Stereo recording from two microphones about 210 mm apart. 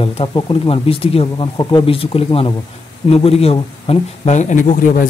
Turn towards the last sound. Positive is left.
turn(degrees=40)  # may be behind; listen again after turning